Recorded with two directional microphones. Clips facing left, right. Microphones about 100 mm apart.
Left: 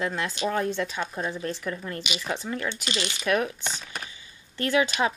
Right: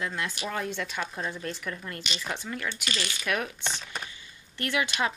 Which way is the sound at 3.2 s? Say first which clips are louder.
Left 6 dB; 30° left (ahead or behind).